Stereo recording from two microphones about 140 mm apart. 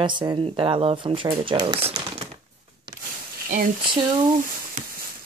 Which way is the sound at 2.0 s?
35° right (ahead or behind).